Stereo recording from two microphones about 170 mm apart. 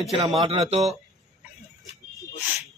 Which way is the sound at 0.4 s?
35° right (ahead or behind).